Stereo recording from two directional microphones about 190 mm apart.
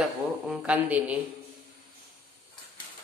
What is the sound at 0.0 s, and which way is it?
A woman's voice, 5° right (ahead or behind).